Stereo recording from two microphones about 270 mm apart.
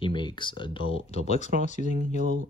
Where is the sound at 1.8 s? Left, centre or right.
Right.